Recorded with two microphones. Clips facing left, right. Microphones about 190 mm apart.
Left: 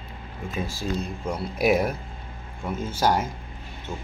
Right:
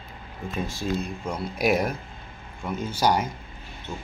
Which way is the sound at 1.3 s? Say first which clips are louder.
Left 2 dB; 5° left (ahead or behind).